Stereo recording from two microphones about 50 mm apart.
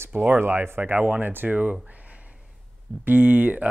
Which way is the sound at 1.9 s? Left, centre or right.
Right.